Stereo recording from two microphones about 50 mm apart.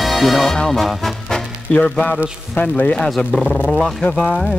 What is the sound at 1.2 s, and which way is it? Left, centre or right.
Music, centre.